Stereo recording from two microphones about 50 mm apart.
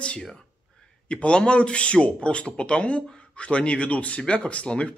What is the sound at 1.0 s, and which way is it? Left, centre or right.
Speech, left.